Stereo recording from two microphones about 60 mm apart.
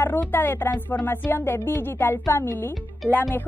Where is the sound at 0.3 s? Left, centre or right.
Left.